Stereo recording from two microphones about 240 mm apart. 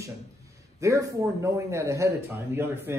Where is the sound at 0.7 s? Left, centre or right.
Centre.